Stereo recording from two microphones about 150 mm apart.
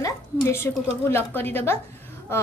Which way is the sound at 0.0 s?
15° left (ahead or behind).